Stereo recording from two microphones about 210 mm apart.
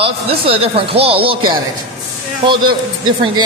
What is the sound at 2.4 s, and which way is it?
Speech, 20° right (ahead or behind).